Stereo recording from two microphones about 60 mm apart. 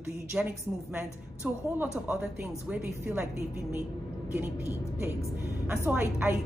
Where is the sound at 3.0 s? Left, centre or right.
Right.